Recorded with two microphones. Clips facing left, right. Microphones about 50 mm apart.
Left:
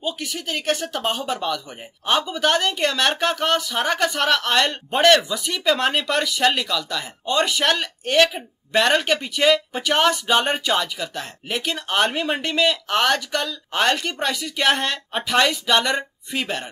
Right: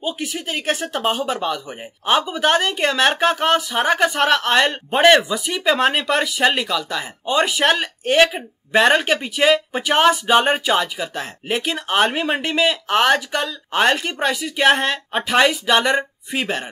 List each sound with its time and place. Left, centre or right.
0.0 s speech: centre